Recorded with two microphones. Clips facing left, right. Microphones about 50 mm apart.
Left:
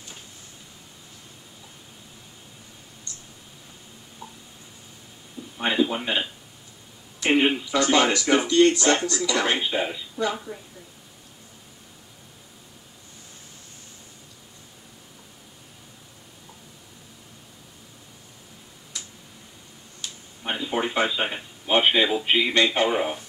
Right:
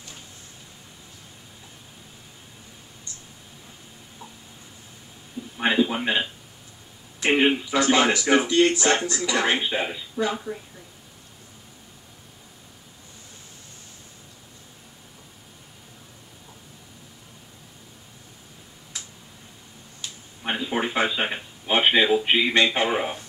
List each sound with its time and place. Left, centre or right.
5.6 s speech: centre
20.4 s a man's voice: centre